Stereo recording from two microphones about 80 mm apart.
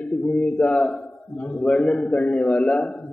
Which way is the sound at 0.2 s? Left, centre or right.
Centre.